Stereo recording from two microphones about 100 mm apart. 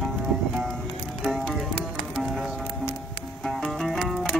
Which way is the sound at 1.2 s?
Centre (ahead or behind).